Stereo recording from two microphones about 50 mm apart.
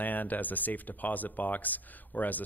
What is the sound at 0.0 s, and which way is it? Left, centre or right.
A woman's voice, left.